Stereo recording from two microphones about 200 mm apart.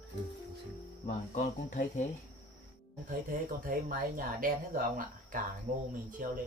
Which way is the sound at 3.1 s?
45° right (ahead or behind).